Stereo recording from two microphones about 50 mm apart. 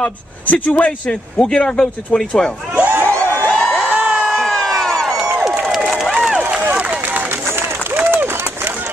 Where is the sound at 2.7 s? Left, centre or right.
Right.